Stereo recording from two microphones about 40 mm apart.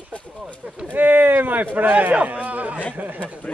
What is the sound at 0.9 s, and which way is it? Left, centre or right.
A man's voice, right.